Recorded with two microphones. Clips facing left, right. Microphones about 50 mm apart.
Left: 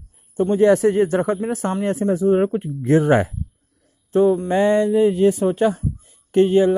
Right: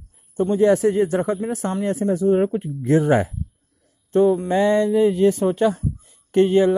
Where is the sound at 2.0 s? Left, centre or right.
Left.